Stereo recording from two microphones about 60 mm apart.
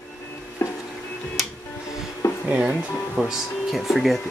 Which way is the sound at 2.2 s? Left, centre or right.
Left.